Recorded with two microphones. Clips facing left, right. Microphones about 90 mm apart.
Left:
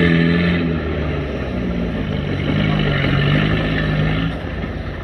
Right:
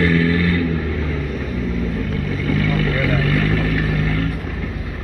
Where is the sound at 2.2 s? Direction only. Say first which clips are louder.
Left 1 dB; 70° left (ahead or behind).